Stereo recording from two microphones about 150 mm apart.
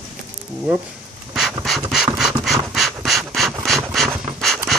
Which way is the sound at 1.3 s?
Centre (ahead or behind).